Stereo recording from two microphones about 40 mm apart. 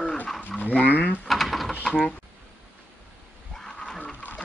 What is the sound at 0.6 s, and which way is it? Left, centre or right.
Speech, left.